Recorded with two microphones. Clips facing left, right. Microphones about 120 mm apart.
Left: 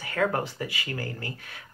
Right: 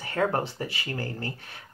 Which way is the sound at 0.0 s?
30° right (ahead or behind).